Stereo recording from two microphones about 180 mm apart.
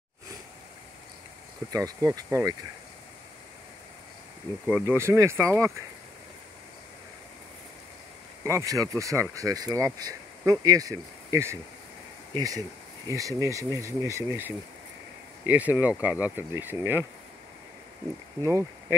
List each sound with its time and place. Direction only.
1.7 s speech: 20° right (ahead or behind)
4.6 s speech: 10° right (ahead or behind)
8.5 s speech: 15° right (ahead or behind)
18.4 s speech: 15° right (ahead or behind)